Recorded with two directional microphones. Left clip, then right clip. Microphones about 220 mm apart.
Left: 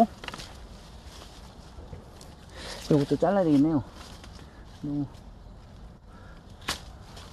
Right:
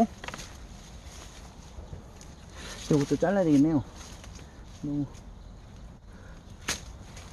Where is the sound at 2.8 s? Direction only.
10° left (ahead or behind).